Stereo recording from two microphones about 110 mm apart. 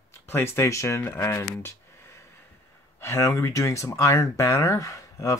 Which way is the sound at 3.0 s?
25° left (ahead or behind).